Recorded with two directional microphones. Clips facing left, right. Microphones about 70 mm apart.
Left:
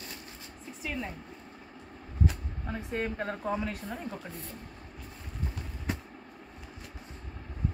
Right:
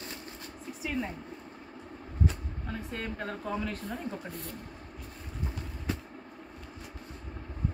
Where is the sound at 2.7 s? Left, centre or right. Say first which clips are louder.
Left 4 dB; left.